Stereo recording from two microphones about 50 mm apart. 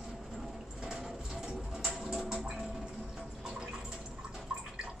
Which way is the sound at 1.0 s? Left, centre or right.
Centre.